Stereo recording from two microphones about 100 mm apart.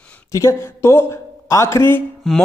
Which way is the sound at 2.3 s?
Centre (ahead or behind).